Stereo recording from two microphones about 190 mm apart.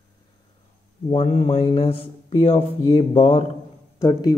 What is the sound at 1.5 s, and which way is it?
Speech, 30° left (ahead or behind).